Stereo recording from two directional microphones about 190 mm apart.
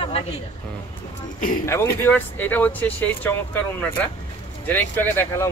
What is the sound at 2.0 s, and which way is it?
Speech, 10° left (ahead or behind).